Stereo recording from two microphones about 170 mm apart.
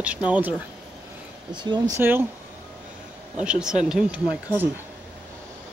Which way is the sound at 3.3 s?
5° right (ahead or behind).